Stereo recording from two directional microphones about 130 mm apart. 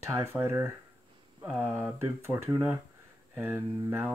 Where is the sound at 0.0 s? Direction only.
20° right (ahead or behind).